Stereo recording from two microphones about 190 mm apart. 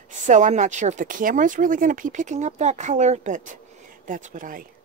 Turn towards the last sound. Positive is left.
turn(degrees=-45)  # may be behind; listen again after turning